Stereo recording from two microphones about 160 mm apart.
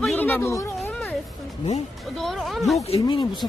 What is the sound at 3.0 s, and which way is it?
Speech, 30° left (ahead or behind).